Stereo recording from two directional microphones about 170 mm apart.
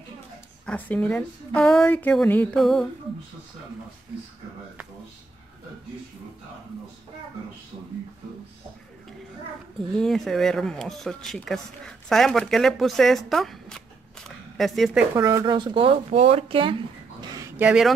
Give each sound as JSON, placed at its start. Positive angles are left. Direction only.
{"t": 0.7, "sound": "a woman's voice", "side_deg": 10}
{"t": 9.9, "sound": "speech", "side_deg": 0}
{"t": 15.1, "sound": "speech", "side_deg": -20}
{"t": 17.2, "sound": "a sound", "side_deg": -25}
{"t": 17.6, "sound": "speech", "side_deg": -5}